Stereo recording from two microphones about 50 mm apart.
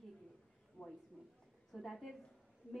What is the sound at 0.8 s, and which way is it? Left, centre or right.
Speech, left.